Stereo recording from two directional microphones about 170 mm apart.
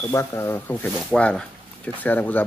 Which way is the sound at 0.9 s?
5° left (ahead or behind).